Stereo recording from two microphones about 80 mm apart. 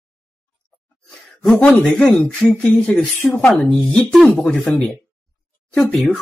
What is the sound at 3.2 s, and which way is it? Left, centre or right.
Speech, centre.